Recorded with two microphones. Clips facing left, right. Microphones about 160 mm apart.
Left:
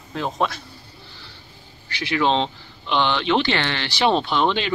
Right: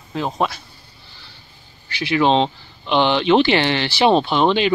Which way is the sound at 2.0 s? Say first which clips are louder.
Right 4 dB; 15° right (ahead or behind).